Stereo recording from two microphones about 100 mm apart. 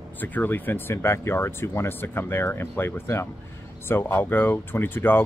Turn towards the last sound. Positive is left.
turn(degrees=20)  # may be behind; listen again after turning